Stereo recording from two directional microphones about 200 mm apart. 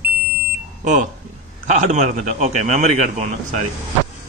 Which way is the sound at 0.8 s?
35° right (ahead or behind).